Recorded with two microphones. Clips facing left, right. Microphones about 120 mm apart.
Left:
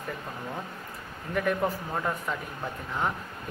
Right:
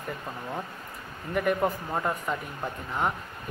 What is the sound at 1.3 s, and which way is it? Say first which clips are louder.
Speech: right 2 dB; 5° right (ahead or behind).